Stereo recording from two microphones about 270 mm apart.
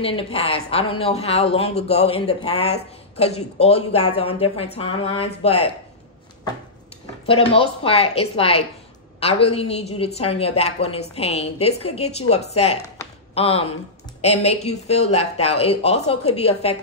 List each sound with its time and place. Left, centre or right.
0.0 s a woman's voice: left
5.0 s a woman's voice: left
7.2 s a woman's voice: centre